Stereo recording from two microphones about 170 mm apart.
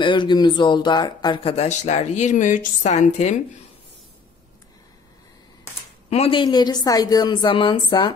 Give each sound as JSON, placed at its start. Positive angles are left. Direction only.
{"t": 0.0, "sound": "speech", "side_deg": 30}
{"t": 6.0, "sound": "a woman's voice", "side_deg": 35}